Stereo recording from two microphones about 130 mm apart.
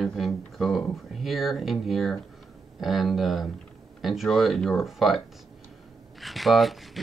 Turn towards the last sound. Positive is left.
turn(degrees=0)  # may be behind; listen again after turning